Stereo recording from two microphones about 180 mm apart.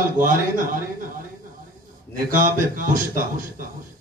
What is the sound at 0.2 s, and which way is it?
Speech, 50° right (ahead or behind).